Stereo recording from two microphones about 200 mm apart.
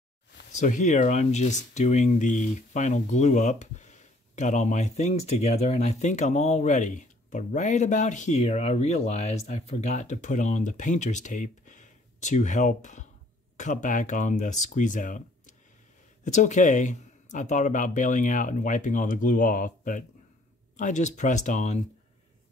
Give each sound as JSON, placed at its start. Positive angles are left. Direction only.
{"t": 0.5, "sound": "speech", "side_deg": 40}